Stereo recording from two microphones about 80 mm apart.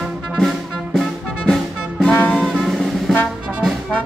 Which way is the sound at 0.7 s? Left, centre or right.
Centre.